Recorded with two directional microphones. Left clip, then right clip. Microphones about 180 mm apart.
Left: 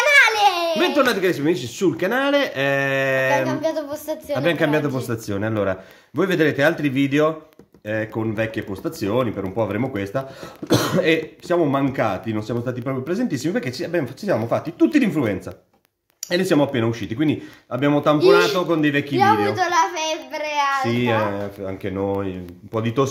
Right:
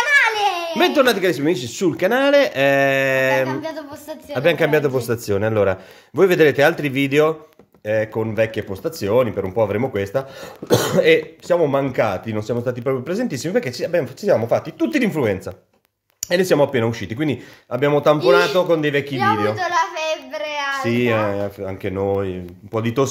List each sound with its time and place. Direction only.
0.0 s a sound: 35° left (ahead or behind)
0.7 s speech: 40° right (ahead or behind)
3.4 s speech: 25° left (ahead or behind)
4.4 s speech: 40° right (ahead or behind)
19.5 s a sound: 35° left (ahead or behind)
20.8 s speech: 40° right (ahead or behind)